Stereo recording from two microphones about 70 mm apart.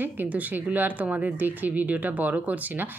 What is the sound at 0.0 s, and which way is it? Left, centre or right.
Speech, right.